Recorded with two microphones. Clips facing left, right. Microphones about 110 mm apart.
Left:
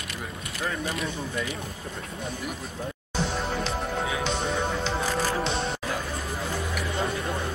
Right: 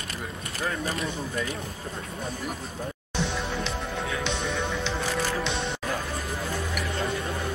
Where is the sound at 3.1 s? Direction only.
40° left (ahead or behind).